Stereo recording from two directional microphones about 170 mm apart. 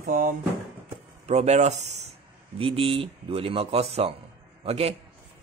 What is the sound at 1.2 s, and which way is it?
Speech, 40° right (ahead or behind).